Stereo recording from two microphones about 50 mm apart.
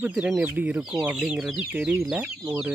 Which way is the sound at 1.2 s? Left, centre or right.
Centre.